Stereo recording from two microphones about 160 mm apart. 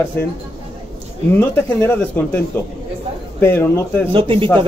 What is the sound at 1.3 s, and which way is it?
Speech, 10° left (ahead or behind).